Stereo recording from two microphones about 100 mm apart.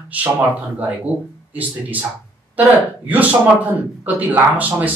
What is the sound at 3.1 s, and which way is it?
Speech, 15° right (ahead or behind).